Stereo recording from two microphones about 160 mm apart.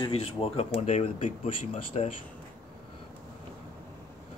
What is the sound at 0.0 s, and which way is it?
Speech, 35° left (ahead or behind).